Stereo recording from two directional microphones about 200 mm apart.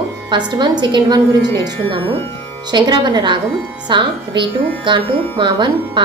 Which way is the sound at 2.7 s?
25° right (ahead or behind).